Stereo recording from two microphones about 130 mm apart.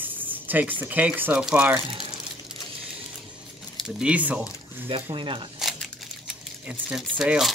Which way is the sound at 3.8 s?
5° right (ahead or behind).